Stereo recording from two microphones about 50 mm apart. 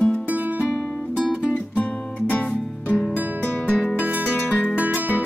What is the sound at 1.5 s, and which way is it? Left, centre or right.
Music, left.